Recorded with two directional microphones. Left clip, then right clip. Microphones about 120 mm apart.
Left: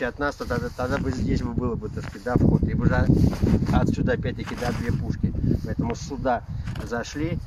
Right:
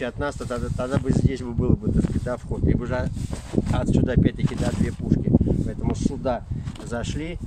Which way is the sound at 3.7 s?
10° right (ahead or behind).